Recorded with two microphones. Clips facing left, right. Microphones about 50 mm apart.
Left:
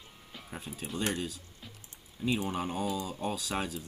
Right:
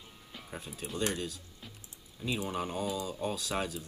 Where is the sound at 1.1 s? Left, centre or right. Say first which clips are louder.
Left 1 dB; centre.